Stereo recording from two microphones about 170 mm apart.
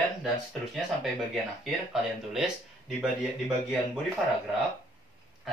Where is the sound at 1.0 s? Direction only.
Centre (ahead or behind).